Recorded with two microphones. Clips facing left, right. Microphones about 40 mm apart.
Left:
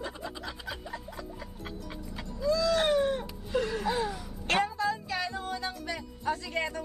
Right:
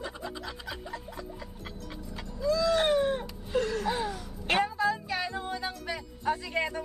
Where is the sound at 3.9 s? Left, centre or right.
Centre.